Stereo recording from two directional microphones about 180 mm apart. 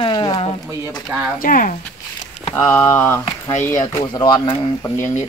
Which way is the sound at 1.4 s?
50° left (ahead or behind).